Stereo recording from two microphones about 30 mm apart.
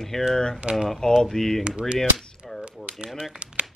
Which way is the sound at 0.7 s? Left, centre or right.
Right.